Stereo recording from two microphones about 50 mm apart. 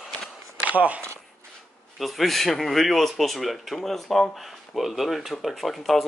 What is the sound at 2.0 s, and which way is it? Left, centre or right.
Speech, centre.